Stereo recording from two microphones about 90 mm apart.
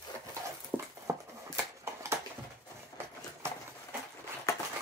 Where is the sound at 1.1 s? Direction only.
35° right (ahead or behind).